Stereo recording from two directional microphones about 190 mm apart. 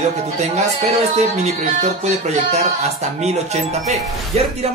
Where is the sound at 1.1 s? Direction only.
35° right (ahead or behind).